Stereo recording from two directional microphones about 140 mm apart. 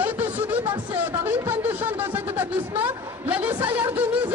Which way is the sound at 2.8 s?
10° right (ahead or behind).